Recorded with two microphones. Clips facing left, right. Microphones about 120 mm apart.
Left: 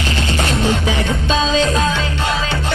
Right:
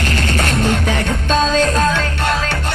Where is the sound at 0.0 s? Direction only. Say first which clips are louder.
Right 1 dB; 50° right (ahead or behind).